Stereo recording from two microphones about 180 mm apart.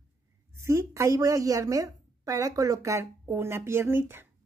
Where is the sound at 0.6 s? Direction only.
15° right (ahead or behind).